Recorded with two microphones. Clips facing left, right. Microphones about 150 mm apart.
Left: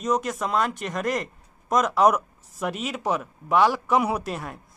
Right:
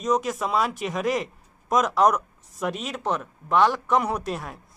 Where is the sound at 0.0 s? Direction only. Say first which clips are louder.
Right 1 dB; centre (ahead or behind).